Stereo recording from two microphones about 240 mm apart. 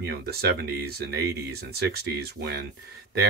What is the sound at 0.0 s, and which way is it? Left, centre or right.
Speech, right.